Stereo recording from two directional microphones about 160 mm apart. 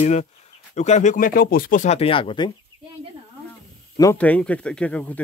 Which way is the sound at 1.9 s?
35° left (ahead or behind).